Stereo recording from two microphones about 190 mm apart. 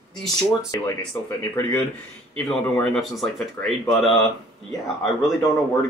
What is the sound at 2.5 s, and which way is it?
Speech, 5° left (ahead or behind).